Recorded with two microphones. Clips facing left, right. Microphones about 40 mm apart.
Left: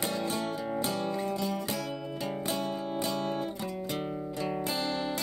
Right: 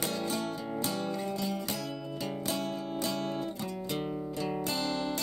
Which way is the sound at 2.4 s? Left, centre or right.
Centre.